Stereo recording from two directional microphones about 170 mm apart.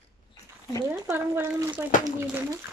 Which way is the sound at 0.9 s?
15° right (ahead or behind).